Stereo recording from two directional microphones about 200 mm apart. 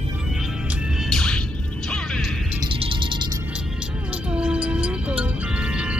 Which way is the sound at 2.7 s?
25° right (ahead or behind).